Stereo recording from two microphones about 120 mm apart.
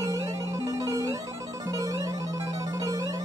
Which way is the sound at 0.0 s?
25° right (ahead or behind).